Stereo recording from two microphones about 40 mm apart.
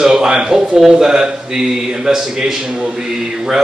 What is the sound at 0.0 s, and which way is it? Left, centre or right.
Speech, centre.